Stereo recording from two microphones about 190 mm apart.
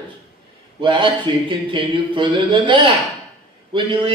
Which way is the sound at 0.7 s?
25° right (ahead or behind).